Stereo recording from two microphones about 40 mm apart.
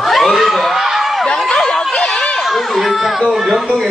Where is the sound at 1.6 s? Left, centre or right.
Centre.